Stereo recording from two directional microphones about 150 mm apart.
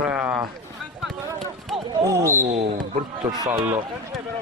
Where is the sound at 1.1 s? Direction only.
Centre (ahead or behind).